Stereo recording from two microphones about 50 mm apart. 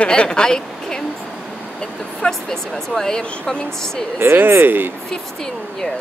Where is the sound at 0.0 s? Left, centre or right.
Centre.